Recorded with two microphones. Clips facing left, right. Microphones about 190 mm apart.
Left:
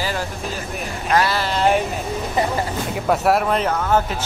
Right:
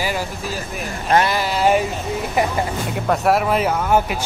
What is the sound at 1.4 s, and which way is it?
Speech, 10° right (ahead or behind).